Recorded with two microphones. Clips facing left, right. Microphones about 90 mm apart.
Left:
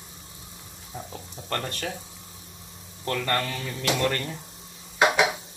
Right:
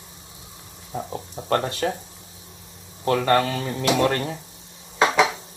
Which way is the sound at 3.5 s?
35° right (ahead or behind).